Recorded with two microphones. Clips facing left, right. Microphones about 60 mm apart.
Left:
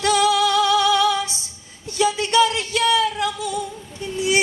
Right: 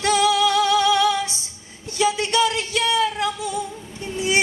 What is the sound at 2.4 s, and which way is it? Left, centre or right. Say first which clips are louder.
Speech: left 4 dB; left.